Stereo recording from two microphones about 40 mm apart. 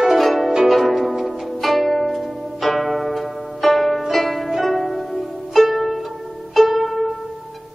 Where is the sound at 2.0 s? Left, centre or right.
Centre.